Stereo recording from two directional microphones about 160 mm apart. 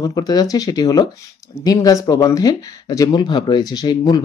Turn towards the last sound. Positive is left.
turn(degrees=25)  # may be behind; listen again after turning